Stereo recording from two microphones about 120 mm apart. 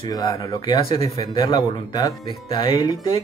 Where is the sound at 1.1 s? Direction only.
30° left (ahead or behind).